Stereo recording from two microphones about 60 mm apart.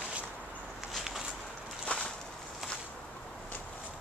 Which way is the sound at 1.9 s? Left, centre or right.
Centre.